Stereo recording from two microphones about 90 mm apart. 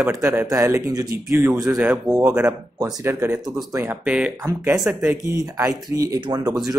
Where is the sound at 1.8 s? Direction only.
25° right (ahead or behind).